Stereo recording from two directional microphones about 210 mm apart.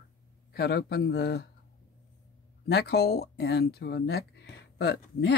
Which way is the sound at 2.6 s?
50° left (ahead or behind).